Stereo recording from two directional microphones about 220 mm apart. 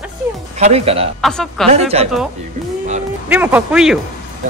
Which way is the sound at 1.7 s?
30° right (ahead or behind).